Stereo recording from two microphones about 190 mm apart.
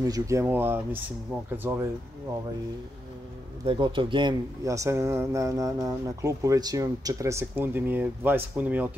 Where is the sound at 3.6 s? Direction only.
25° right (ahead or behind).